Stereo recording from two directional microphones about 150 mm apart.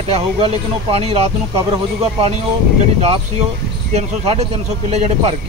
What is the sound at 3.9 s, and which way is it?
Speech, 45° right (ahead or behind).